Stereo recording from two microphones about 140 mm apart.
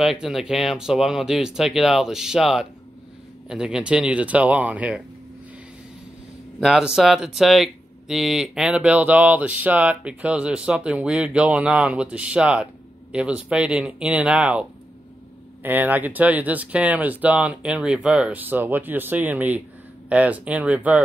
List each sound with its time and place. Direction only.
0.0 s speech: centre (ahead or behind)
6.6 s speech: 5° right (ahead or behind)